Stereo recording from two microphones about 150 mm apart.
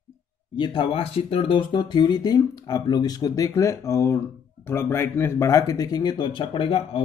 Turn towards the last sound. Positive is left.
turn(degrees=35)  # may be behind; listen again after turning